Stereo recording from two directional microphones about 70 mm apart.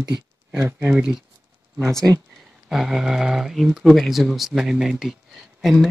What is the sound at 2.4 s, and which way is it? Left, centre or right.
Speech, centre.